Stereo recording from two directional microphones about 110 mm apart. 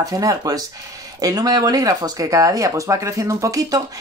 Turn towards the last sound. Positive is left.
turn(degrees=-30)  # may be behind; listen again after turning